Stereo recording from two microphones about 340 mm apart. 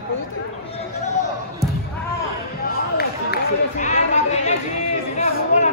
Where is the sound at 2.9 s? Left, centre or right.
Left.